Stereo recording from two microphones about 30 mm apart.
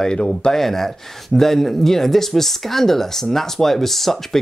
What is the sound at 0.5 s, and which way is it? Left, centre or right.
Speech, centre.